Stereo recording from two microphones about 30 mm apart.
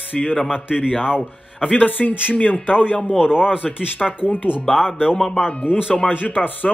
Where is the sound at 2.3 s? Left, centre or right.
Left.